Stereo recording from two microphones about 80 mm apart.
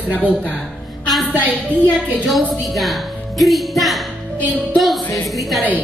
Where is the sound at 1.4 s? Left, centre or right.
Right.